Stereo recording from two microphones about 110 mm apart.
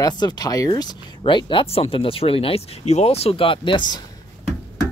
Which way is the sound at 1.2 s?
50° left (ahead or behind).